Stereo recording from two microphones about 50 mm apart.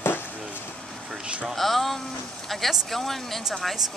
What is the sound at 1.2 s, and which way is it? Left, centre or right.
Speech, right.